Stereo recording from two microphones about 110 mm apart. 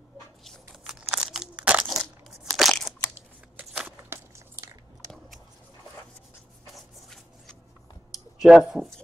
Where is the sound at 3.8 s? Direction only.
20° right (ahead or behind).